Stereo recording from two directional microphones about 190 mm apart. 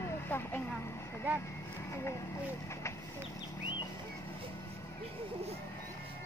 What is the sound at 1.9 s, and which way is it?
Speech, 15° left (ahead or behind).